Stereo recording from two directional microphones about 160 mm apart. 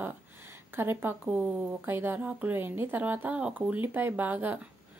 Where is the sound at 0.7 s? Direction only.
15° right (ahead or behind).